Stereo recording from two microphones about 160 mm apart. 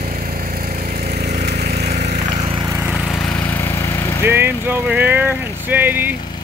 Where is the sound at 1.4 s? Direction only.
85° right.